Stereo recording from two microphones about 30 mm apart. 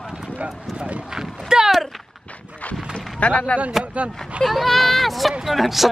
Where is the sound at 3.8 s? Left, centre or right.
Right.